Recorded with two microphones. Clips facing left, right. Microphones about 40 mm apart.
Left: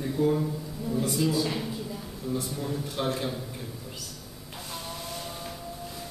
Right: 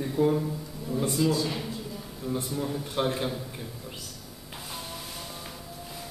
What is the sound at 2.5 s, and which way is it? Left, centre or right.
Speech, centre.